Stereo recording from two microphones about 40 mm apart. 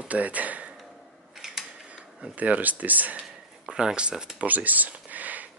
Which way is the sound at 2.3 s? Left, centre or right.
Right.